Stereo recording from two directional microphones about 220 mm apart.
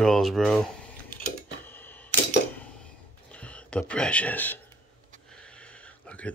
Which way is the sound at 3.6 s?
5° left (ahead or behind).